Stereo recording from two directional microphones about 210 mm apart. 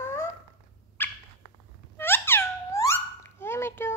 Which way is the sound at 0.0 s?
10° left (ahead or behind).